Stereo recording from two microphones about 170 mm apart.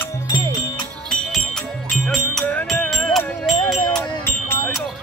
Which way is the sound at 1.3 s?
Centre (ahead or behind).